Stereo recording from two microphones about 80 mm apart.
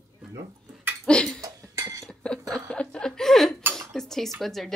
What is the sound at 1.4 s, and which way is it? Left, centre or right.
Dishes, right.